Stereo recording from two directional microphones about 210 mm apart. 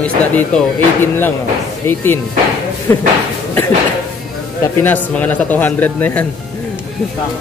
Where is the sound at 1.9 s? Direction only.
10° left (ahead or behind).